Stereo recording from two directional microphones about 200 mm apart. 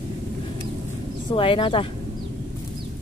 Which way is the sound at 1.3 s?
25° left (ahead or behind).